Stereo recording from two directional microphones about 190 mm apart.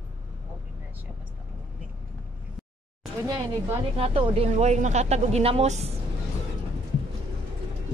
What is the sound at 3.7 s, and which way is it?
A woman's voice, 30° right (ahead or behind).